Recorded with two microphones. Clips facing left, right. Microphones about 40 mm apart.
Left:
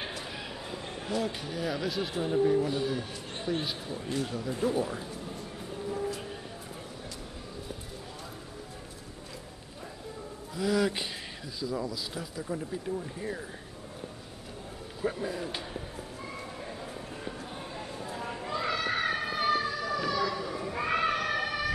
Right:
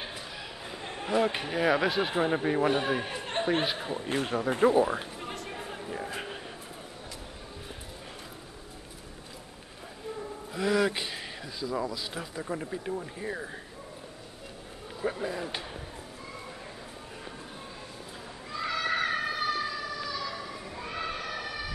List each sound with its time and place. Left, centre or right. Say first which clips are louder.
0.7 s a sound: right 1 dB; centre
1.1 s speech: right 6 dB; right
4.9 s a sound: right 3 dB; right
10.5 s speech: right 1 dB; centre
11.7 s speech: right 3 dB; centre
15.0 s speech: right 1 dB; centre
18.6 s children playing: right 2 dB; centre
19.5 s emergency vehicle: left 3 dB; left
20.2 s children playing: left 5 dB; centre
20.7 s a sound: left 8 dB; left